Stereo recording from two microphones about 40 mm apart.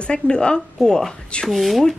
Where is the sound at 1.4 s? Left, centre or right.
Centre.